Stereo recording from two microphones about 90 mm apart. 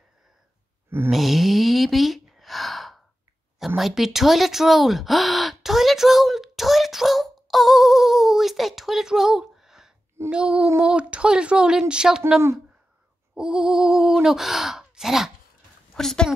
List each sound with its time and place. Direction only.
0.8 s a sound: 25° right (ahead or behind)
1.1 s sigh: centre (ahead or behind)
3.5 s speech: centre (ahead or behind)
13.3 s speech: 10° right (ahead or behind)
15.9 s a woman's voice: 5° left (ahead or behind)